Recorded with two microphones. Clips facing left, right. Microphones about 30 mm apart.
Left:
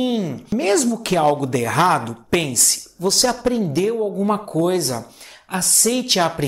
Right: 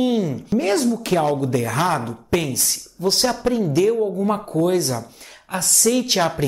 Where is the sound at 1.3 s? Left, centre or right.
Left.